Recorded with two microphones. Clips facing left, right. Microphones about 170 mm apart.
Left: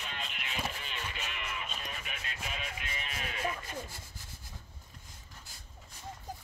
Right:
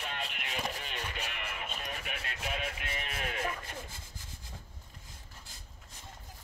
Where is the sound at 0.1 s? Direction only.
55° right (ahead or behind).